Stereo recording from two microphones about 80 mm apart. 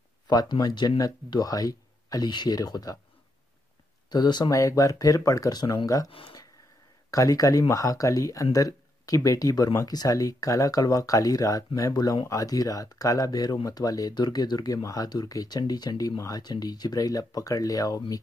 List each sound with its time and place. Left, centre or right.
0.3 s speech: left
4.1 s speech: left
4.5 s speech: left
7.1 s speech: left
14.8 s speech: left
16.2 s speech: left